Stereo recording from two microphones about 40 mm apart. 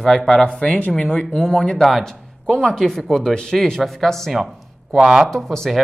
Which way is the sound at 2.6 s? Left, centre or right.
Centre.